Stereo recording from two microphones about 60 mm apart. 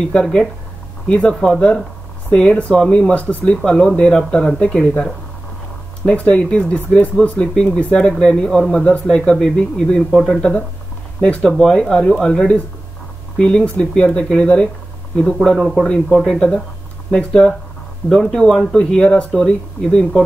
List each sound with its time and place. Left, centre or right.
0.0 s speech: centre
16.3 s speech: centre